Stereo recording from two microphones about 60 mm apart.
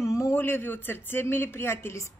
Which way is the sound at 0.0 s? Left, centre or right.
Left.